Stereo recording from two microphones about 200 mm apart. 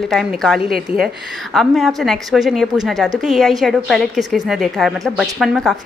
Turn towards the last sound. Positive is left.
turn(degrees=0)  # may be behind; listen again after turning